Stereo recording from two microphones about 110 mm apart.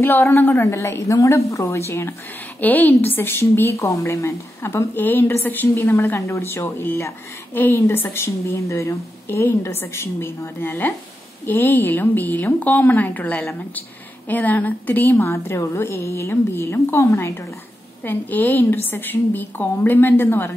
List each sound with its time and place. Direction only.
0.0 s a woman's voice: 20° left (ahead or behind)